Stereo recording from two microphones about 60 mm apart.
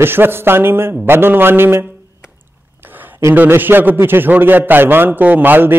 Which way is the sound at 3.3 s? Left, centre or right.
Right.